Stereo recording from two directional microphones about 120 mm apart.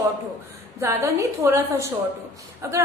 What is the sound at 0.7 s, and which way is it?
A woman's voice, 25° right (ahead or behind).